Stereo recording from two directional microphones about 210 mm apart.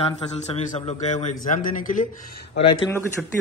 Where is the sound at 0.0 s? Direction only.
30° left (ahead or behind).